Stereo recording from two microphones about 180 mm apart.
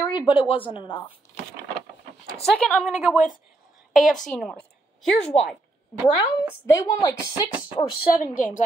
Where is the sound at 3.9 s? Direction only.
Centre (ahead or behind).